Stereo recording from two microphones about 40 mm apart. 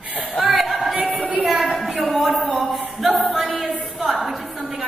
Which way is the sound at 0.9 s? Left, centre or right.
Right.